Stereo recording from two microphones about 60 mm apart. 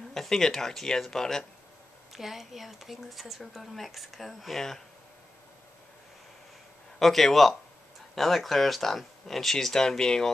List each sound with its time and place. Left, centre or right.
0.1 s speech: centre
7.0 s speech: centre